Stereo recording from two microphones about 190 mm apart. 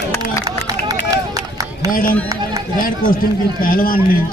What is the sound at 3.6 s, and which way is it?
Speech, 50° left (ahead or behind).